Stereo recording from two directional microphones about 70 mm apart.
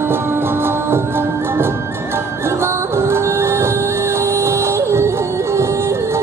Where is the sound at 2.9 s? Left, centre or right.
Right.